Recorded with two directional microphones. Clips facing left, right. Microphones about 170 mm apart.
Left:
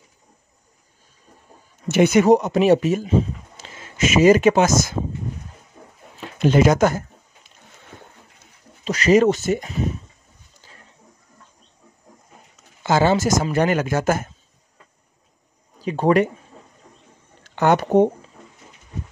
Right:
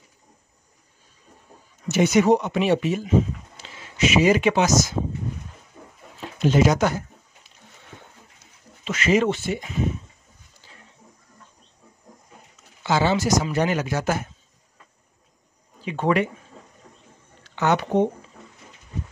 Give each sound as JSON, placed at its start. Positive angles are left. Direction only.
{"t": 1.9, "sound": "speech", "side_deg": 55}
{"t": 6.4, "sound": "speech", "side_deg": 55}
{"t": 8.8, "sound": "speech", "side_deg": 40}
{"t": 12.8, "sound": "speech", "side_deg": 45}
{"t": 15.8, "sound": "speech", "side_deg": 40}
{"t": 17.4, "sound": "speech", "side_deg": 45}